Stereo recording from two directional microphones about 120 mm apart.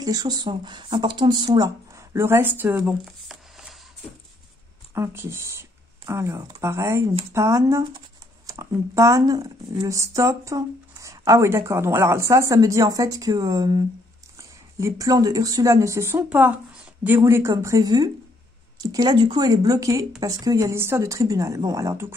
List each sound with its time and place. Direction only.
0.0 s speech: 35° right (ahead or behind); by 2.8 s 15° right (ahead or behind)
2.9 s shuffling cards: 5° right (ahead or behind)
4.9 s speech: 20° right (ahead or behind)
17.2 s speech: 25° right (ahead or behind)